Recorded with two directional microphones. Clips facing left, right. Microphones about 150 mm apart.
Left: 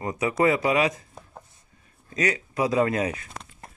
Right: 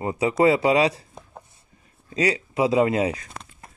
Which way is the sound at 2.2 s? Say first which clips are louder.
Right 3 dB; 30° right (ahead or behind).